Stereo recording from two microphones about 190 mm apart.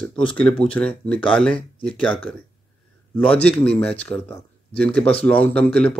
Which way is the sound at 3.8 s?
5° left (ahead or behind).